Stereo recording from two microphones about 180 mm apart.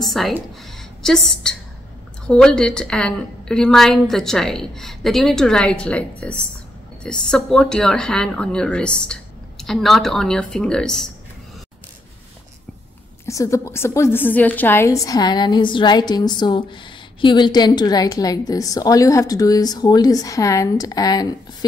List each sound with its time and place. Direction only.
0.0 s a sound: centre (ahead or behind)
2.2 s a woman's voice: 5° left (ahead or behind)
13.2 s a woman's voice: 15° left (ahead or behind)